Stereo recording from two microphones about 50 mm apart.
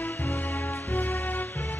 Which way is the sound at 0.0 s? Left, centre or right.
Left.